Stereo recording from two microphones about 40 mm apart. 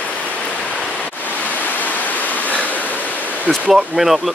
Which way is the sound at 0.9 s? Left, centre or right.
Left.